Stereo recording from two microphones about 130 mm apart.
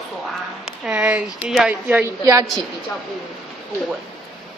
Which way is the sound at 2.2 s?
25° right (ahead or behind).